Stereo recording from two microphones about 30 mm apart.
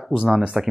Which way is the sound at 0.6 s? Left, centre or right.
Centre.